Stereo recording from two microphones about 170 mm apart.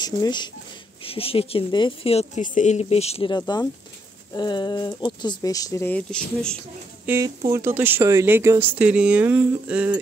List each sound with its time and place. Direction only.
0.0 s speech: 25° left (ahead or behind)
2.4 s speech: 45° left (ahead or behind)
3.3 s speech: 25° left (ahead or behind); by 6.6 s 5° left (ahead or behind)
7.1 s speech: 20° right (ahead or behind)